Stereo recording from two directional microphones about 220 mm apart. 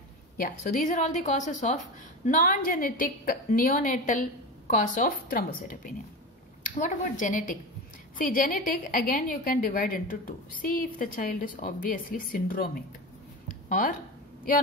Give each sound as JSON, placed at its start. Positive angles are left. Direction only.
{"t": 0.4, "sound": "a woman's voice", "side_deg": 35}